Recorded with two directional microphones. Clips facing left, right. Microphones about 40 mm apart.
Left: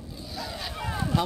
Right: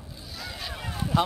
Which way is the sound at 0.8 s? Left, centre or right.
Centre.